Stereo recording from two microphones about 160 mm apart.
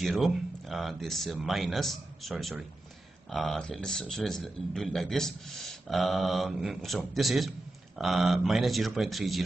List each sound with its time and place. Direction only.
0.0 s speech: centre (ahead or behind)